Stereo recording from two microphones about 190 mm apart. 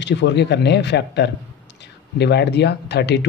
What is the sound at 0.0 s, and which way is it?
A man's voice, 65° left (ahead or behind).